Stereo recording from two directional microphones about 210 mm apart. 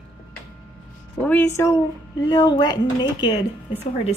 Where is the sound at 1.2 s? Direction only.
5° left (ahead or behind).